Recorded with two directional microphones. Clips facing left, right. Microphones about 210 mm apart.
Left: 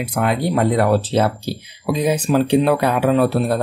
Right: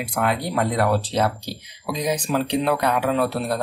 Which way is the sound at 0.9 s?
5° left (ahead or behind).